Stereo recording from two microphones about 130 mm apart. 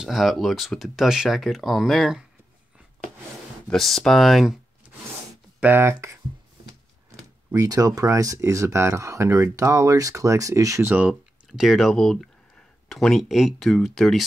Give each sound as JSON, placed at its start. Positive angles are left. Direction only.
{"t": 0.0, "sound": "speech", "side_deg": 0}
{"t": 3.6, "sound": "speech", "side_deg": 0}
{"t": 5.6, "sound": "speech", "side_deg": -15}
{"t": 7.5, "sound": "speech", "side_deg": -30}